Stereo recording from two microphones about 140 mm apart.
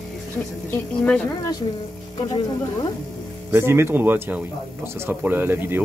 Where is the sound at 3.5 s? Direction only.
20° right (ahead or behind).